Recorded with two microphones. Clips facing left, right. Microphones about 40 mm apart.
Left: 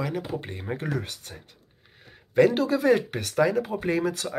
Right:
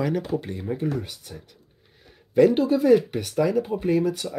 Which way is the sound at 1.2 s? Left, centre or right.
Left.